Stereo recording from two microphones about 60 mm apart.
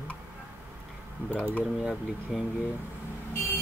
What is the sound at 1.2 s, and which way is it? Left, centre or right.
Speech, right.